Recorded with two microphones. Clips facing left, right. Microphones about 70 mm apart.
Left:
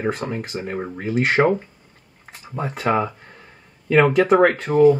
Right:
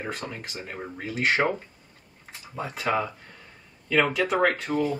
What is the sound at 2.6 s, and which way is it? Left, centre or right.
Speech, left.